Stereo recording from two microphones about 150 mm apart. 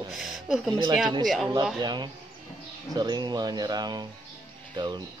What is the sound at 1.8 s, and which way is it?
Speech, 30° right (ahead or behind).